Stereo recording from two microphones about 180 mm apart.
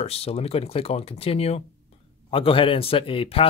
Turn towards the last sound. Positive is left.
turn(degrees=30)  # may be behind; listen again after turning